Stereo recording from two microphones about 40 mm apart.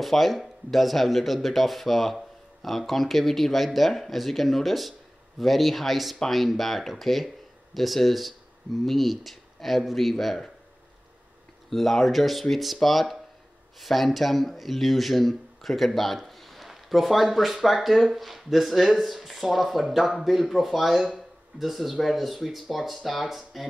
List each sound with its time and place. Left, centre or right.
0.0 s speech: centre
11.7 s speech: centre